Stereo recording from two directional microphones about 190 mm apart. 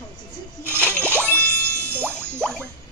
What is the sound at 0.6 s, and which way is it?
Music, 10° right (ahead or behind).